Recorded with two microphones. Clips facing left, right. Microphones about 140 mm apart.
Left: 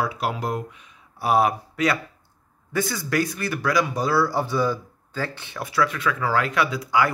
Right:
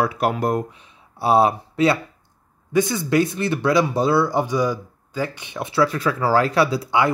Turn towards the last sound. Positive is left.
turn(degrees=-30)  # may be behind; listen again after turning